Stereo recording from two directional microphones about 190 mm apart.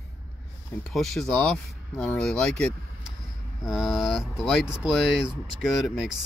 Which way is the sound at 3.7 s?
Centre (ahead or behind).